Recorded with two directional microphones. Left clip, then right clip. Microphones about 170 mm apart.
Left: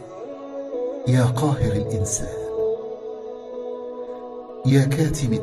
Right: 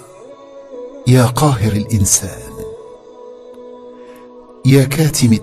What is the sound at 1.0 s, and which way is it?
Speech, 55° right (ahead or behind).